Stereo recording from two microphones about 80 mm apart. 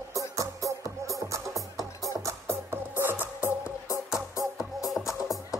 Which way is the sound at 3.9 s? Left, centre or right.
Left.